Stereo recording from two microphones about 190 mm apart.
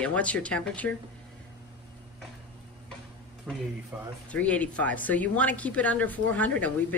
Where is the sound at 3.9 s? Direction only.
10° right (ahead or behind).